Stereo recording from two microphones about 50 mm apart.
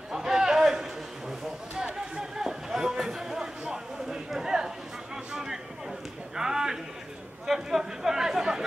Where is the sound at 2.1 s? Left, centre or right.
Centre.